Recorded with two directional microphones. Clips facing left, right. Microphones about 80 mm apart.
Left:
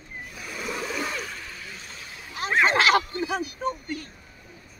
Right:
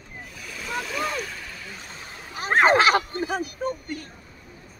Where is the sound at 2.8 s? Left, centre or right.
Right.